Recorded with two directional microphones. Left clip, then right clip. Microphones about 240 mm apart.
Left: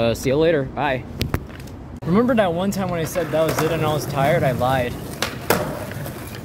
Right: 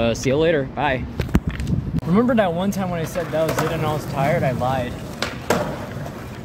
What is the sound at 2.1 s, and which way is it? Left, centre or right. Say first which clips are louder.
Speech: left 1 dB; centre.